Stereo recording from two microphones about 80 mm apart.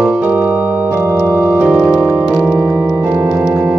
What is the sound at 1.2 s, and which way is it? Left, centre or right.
Organ, right.